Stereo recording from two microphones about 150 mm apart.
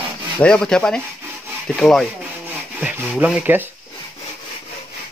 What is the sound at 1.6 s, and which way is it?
Rub, 5° left (ahead or behind).